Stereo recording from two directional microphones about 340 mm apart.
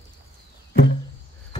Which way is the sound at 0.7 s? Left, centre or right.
Left.